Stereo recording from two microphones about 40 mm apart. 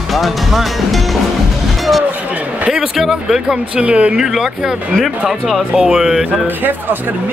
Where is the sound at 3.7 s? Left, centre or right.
Right.